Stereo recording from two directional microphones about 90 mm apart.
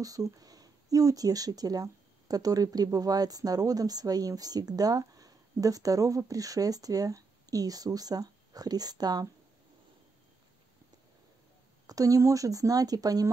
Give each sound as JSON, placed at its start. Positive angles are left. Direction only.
{"t": 0.0, "sound": "speech", "side_deg": -40}
{"t": 11.9, "sound": "speech", "side_deg": -40}